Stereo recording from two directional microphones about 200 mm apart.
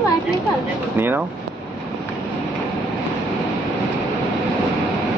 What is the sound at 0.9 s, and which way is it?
Speech, 10° right (ahead or behind).